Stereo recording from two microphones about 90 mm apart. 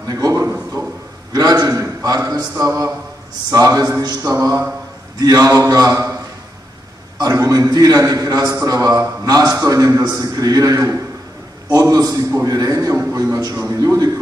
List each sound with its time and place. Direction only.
0.1 s a sound: 40° right (ahead or behind)
2.6 s a man's voice: 40° right (ahead or behind)
7.2 s a man's voice: 40° right (ahead or behind)